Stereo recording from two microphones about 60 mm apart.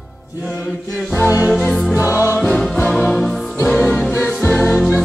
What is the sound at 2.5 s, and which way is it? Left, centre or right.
Music, centre.